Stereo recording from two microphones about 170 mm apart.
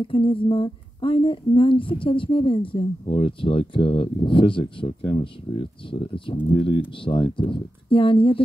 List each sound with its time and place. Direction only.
0.0 s speech: 30° left (ahead or behind)